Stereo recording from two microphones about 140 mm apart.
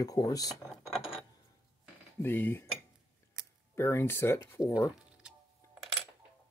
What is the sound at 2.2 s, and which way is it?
Speech, 15° left (ahead or behind).